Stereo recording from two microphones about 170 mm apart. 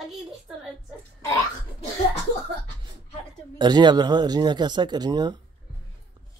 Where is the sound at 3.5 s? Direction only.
25° right (ahead or behind).